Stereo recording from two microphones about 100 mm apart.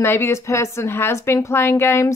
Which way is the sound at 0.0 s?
25° left (ahead or behind).